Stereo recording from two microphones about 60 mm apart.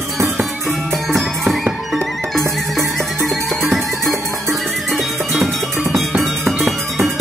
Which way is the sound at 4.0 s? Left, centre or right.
Right.